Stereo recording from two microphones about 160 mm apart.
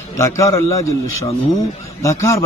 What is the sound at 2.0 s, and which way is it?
Speech, 20° left (ahead or behind).